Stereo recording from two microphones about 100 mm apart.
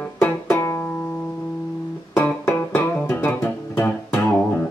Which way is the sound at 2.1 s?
20° left (ahead or behind).